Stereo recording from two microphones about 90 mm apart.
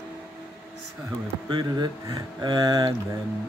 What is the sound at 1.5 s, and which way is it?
Speech, 50° right (ahead or behind).